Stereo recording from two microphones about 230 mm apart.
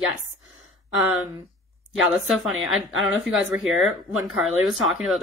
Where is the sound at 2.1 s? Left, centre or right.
Centre.